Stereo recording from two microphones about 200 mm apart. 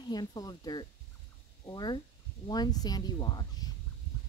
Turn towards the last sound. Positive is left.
turn(degrees=20)  # may be behind; listen again after turning